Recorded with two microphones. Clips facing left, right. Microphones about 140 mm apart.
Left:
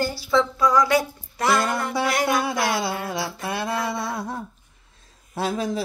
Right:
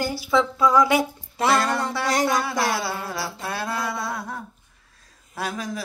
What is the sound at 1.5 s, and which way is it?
Music, 15° left (ahead or behind).